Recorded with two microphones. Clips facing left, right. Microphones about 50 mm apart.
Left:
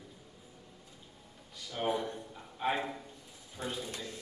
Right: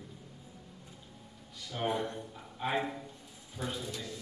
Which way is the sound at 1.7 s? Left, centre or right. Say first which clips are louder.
Even; centre.